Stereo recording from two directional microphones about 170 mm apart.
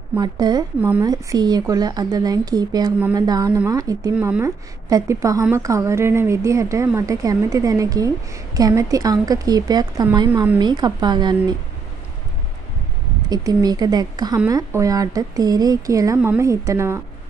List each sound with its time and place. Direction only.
0.2 s speech: 25° right (ahead or behind)
0.7 s a woman's voice: 10° right (ahead or behind)
1.0 s a woman's voice: 20° right (ahead or behind)
13.3 s speech: 20° right (ahead or behind)